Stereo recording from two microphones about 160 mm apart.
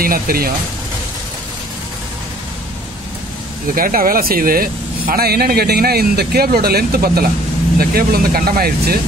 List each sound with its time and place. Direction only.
0.0 s speech: 65° right (ahead or behind)
3.7 s speech: 65° right (ahead or behind)